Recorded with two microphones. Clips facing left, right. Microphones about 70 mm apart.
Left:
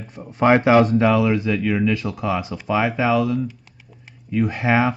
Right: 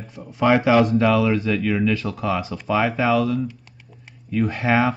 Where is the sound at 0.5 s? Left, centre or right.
Left.